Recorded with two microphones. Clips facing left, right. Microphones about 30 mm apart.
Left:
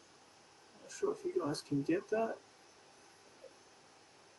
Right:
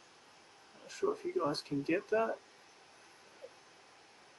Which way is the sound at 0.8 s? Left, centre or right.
Right.